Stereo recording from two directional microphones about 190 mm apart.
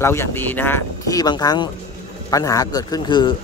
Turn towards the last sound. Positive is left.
turn(degrees=25)  # may be behind; listen again after turning